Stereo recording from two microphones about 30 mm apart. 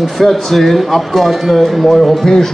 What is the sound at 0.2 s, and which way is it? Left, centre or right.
Speech, centre.